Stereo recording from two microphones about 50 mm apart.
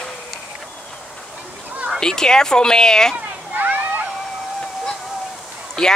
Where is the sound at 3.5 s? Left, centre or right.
Right.